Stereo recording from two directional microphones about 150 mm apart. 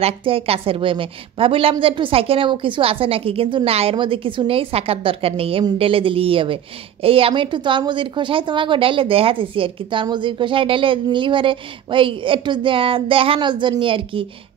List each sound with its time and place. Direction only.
0.0 s a woman's voice: 40° right (ahead or behind)